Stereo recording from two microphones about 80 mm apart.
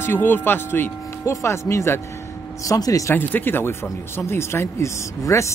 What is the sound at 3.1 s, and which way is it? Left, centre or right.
Speech, left.